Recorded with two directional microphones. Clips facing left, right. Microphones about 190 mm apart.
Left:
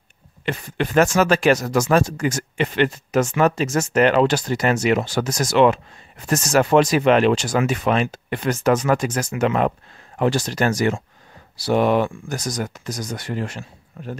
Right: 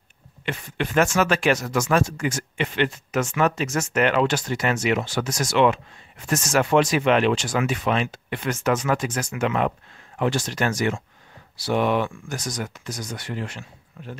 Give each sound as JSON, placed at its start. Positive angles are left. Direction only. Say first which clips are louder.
{"t": 0.5, "sound": "speech", "louder": "left 4 dB", "side_deg": 40}